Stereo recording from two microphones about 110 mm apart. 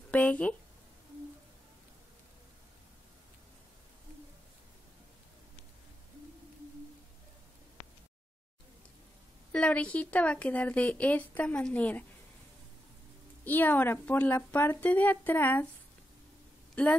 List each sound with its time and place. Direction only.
0.1 s speech: 10° left (ahead or behind)
9.5 s speech: 10° left (ahead or behind)
13.4 s speech: 15° left (ahead or behind)